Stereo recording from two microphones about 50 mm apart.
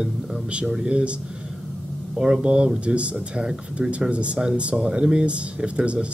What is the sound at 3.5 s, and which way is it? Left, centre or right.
Speech, centre.